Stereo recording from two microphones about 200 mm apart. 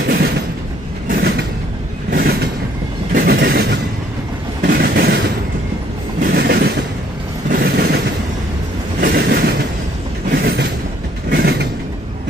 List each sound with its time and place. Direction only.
1.0 s train: 50° right (ahead or behind)
9.0 s train: 50° right (ahead or behind)
11.2 s vehicle: 55° right (ahead or behind)